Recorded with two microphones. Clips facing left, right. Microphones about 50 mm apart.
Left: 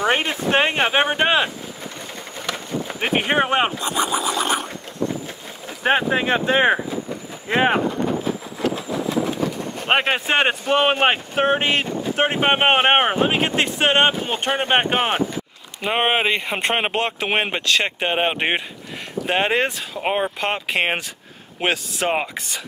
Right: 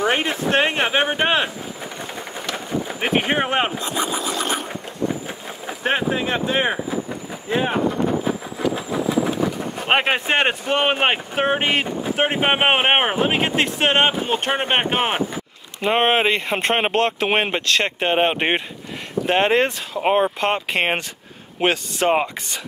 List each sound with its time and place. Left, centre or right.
0.0 s speech: centre
2.4 s vehicle: centre
5.9 s speech: left
7.4 s speech: left
9.8 s speech: centre